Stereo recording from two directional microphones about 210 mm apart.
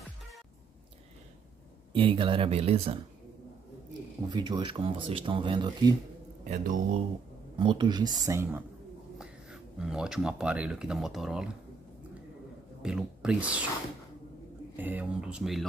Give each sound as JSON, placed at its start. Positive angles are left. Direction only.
{"t": 1.9, "sound": "speech", "side_deg": -25}
{"t": 4.3, "sound": "speech", "side_deg": -20}
{"t": 6.5, "sound": "a man's voice", "side_deg": -35}
{"t": 7.5, "sound": "speech", "side_deg": -20}
{"t": 12.8, "sound": "speech", "side_deg": -5}
{"t": 14.8, "sound": "speech", "side_deg": -10}